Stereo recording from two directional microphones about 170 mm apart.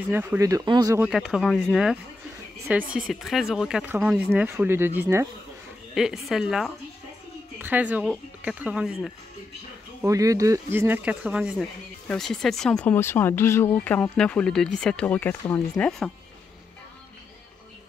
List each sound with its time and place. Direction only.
0.1 s speech: 10° right (ahead or behind)
1.0 s speech: 5° right (ahead or behind)
5.9 s speech: centre (ahead or behind)
10.0 s speech: 20° right (ahead or behind); by 16.1 s 10° left (ahead or behind)